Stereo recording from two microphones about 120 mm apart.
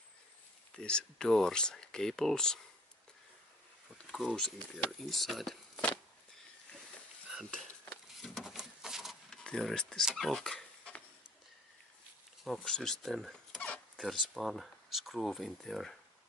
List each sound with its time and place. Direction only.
0.7 s speech: 10° left (ahead or behind)
4.1 s speech: centre (ahead or behind)
8.2 s a sound: centre (ahead or behind)
12.4 s speech: 5° left (ahead or behind)
13.6 s a sound: 10° left (ahead or behind)
14.0 s speech: centre (ahead or behind)